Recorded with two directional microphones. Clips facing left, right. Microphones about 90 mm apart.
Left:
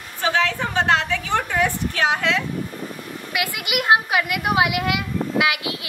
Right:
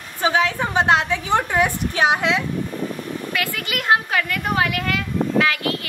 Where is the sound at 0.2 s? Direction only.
20° right (ahead or behind).